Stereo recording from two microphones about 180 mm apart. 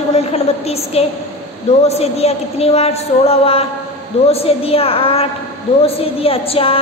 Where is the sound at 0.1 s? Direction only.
35° left (ahead or behind).